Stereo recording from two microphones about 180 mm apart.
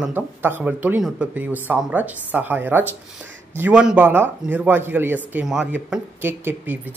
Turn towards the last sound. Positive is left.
turn(degrees=-10)  # may be behind; listen again after turning